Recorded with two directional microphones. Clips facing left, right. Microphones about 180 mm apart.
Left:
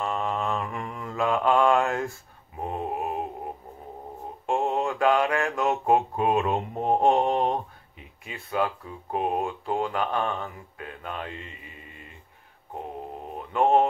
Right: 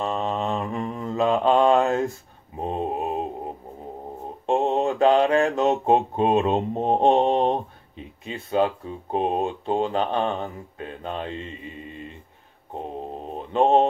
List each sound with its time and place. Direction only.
0.0 s mantra: 25° right (ahead or behind)
8.3 s speech: 25° right (ahead or behind)
13.3 s mantra: 25° right (ahead or behind)